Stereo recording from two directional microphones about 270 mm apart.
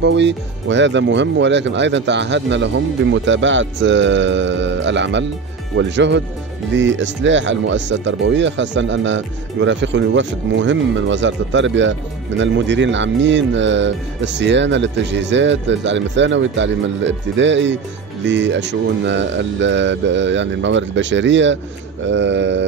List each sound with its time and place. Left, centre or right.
0.0 s speech: right